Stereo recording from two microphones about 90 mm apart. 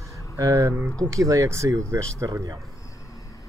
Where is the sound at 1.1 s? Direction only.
40° right (ahead or behind).